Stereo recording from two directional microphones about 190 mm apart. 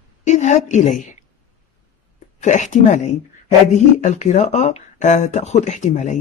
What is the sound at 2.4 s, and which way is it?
Speech, 40° left (ahead or behind).